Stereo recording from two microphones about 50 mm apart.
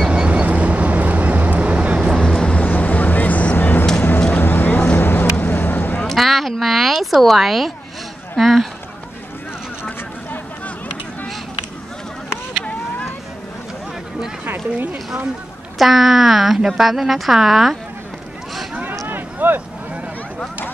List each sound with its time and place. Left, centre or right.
0.1 s vehicle: right
2.1 s vehicle: centre
2.5 s vehicle: left
3.5 s music: left
4.4 s vehicle: left
5.4 s boat: left
6.0 s a sound: centre
8.4 s speech: centre
14.4 s a sound: right
15.8 s a woman's voice: centre
19.0 s a sound: right